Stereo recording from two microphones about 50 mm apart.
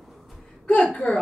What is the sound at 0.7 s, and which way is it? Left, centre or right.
Speech, left.